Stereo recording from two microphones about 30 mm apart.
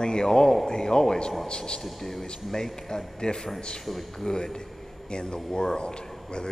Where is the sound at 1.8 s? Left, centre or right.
Centre.